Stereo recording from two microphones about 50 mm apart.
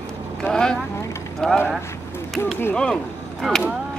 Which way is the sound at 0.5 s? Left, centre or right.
Centre.